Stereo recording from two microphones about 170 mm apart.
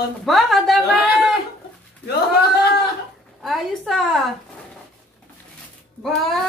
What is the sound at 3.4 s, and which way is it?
Speech, centre (ahead or behind).